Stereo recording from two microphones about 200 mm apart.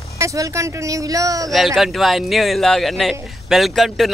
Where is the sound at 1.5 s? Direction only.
Centre (ahead or behind).